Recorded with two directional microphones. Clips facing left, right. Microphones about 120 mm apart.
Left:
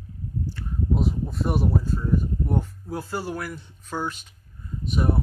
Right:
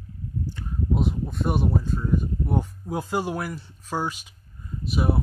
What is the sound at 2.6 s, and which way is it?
Speech, 15° right (ahead or behind).